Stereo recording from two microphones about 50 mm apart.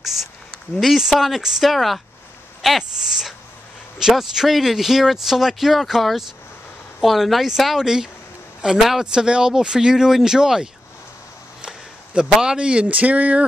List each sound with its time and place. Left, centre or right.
0.7 s speech: centre
9.0 s speech: centre